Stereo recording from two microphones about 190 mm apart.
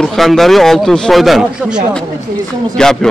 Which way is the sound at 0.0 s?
Centre (ahead or behind).